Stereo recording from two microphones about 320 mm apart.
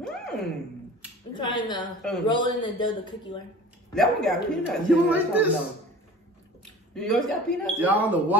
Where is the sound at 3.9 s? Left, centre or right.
Centre.